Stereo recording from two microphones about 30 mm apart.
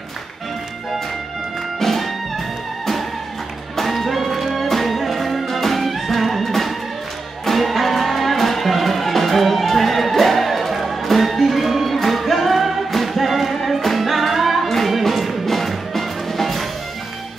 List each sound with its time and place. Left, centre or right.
1.8 s music: centre